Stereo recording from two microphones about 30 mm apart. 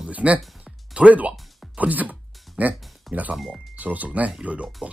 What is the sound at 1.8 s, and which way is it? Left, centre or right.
Speech, right.